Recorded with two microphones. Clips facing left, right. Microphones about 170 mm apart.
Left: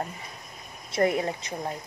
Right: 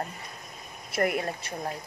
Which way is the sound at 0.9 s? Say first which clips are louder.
Left 3 dB; 20° left (ahead or behind).